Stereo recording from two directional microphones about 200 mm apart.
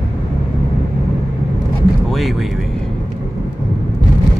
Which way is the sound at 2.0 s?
Centre (ahead or behind).